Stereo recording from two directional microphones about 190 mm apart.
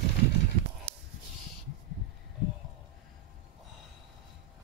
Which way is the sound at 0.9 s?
30° right (ahead or behind).